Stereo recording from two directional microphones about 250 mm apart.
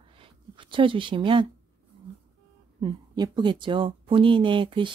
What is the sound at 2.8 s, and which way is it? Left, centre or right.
Speech, centre.